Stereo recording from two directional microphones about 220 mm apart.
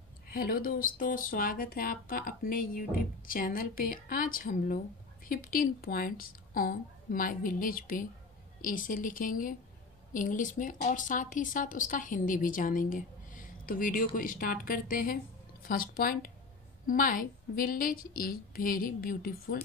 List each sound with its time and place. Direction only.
0.3 s speech: 40° left (ahead or behind)